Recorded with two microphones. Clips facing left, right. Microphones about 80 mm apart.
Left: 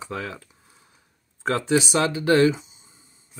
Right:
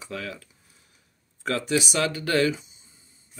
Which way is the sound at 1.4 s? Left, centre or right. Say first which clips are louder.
Left 4 dB; left.